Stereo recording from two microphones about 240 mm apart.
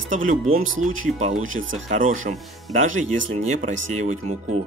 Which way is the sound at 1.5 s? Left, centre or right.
Right.